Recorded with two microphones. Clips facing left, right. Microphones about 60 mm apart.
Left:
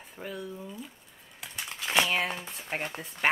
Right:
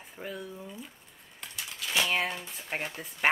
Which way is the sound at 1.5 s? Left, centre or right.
Left.